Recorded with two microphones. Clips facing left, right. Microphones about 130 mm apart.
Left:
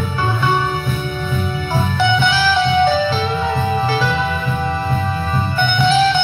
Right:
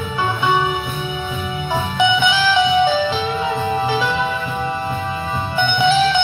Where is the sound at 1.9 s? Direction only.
15° right (ahead or behind).